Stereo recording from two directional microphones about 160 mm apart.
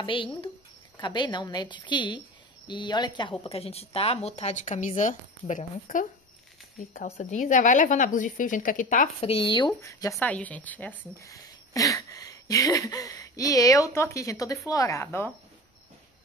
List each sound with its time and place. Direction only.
0.0 s a woman's voice: 30° left (ahead or behind); by 9.1 s 55° left (ahead or behind)
9.2 s a woman's voice: 35° left (ahead or behind); by 10.1 s 20° left (ahead or behind)
10.1 s a woman's voice: 10° left (ahead or behind)